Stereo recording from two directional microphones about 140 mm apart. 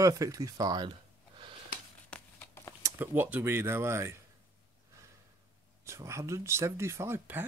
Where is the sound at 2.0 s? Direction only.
10° left (ahead or behind).